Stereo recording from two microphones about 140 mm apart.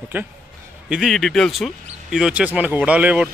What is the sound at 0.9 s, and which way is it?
Speech, centre (ahead or behind).